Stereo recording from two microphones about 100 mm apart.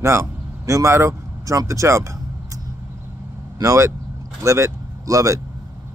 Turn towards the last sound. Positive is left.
turn(degrees=-35)  # may be behind; listen again after turning